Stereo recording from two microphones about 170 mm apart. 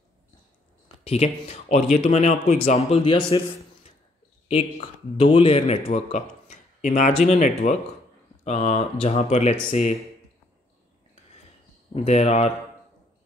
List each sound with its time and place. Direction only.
1.0 s speech: 40° left (ahead or behind)
11.9 s speech: 40° left (ahead or behind)